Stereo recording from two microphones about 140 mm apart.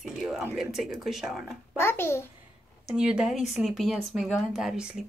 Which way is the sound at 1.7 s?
15° left (ahead or behind).